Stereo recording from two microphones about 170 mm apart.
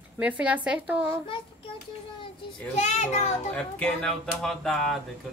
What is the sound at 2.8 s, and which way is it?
Speech, 40° left (ahead or behind).